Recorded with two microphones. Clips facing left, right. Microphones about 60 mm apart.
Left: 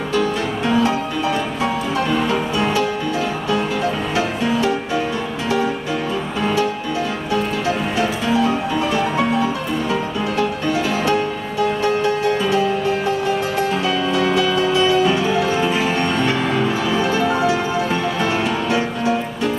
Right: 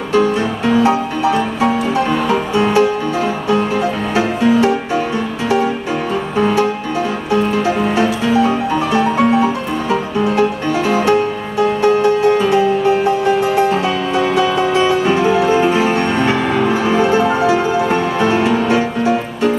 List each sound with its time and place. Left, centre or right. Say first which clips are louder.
0.1 s music: right 6 dB; right
2.2 s music: right 4 dB; right
4.2 s music: right 7 dB; right
6.4 s music: right 4 dB; right